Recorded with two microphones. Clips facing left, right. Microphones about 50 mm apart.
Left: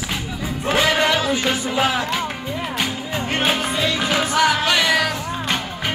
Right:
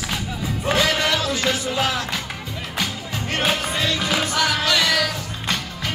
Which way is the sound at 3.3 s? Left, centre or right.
Centre.